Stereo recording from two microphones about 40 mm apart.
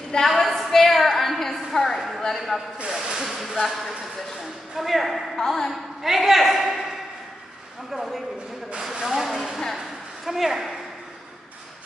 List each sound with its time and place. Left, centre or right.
0.4 s a woman's voice: centre
1.4 s a sound: centre
2.2 s a woman's voice: centre
2.9 s a woman's voice: centre
5.4 s a woman's voice: centre
5.7 s a woman's voice: centre
7.9 s a woman's voice: centre